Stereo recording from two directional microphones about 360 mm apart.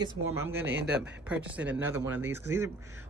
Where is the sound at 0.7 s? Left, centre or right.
Right.